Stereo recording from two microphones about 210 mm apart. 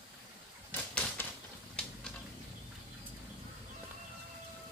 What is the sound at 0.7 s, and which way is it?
Typewriter, 10° left (ahead or behind).